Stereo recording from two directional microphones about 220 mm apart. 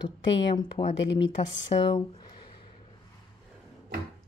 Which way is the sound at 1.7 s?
25° left (ahead or behind).